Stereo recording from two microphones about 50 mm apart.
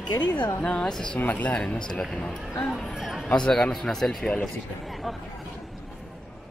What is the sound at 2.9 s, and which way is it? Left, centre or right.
Speech, centre.